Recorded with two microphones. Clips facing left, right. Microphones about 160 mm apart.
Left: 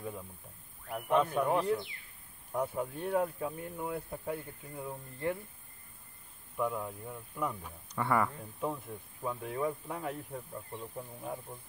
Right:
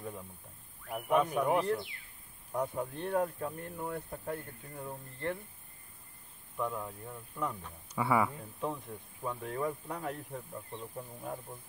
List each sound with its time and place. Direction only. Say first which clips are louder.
0.8 s speech: even; 10° right (ahead or behind)
2.5 s speech: left 1 dB; 5° left (ahead or behind)
6.5 s speech: left 2 dB; 5° left (ahead or behind)
7.9 s speech: right 1 dB; 5° right (ahead or behind)